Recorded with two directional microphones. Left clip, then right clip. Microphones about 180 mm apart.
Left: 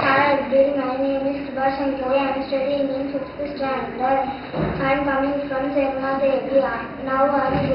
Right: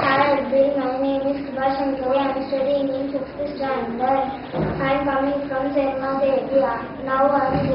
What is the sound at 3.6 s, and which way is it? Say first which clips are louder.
Speech: even; centre (ahead or behind).